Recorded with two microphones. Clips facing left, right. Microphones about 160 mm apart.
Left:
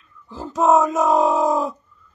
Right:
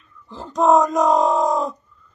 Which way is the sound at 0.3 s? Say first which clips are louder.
Right 1 dB; 5° left (ahead or behind).